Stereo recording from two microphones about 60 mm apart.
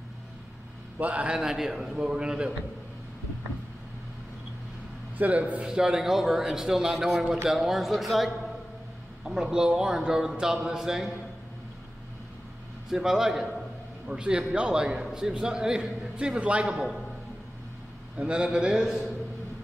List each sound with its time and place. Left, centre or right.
0.9 s a man's voice: right
1.4 s a man's voice: centre
5.1 s a man's voice: right
5.7 s a man's voice: centre
12.9 s a man's voice: centre
18.1 s a man's voice: centre